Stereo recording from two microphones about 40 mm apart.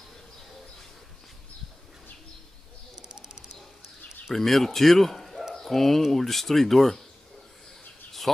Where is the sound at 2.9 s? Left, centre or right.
Centre.